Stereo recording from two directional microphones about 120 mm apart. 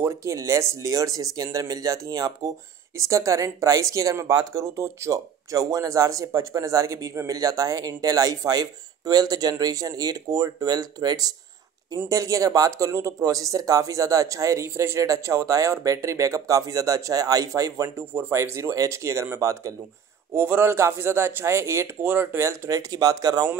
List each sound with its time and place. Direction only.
0.0 s speech: 25° right (ahead or behind)